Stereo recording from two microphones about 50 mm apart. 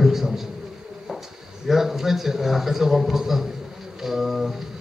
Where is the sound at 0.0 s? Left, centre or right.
Centre.